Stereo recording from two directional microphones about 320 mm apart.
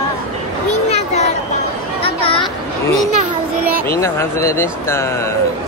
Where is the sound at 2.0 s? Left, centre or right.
Centre.